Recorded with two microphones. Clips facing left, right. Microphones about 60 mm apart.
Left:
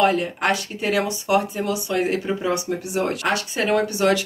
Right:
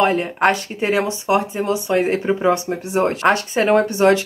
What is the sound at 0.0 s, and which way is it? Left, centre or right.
Speech, right.